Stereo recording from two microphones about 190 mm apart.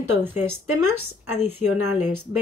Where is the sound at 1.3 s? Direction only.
10° right (ahead or behind).